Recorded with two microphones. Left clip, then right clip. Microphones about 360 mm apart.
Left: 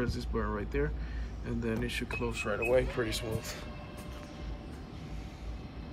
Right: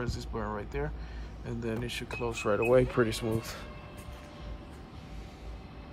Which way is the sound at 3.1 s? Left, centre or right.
Centre.